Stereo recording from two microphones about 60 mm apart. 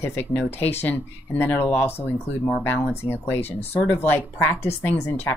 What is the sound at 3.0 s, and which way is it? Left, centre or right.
Speech, left.